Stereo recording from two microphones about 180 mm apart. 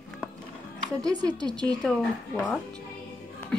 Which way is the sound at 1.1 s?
20° right (ahead or behind).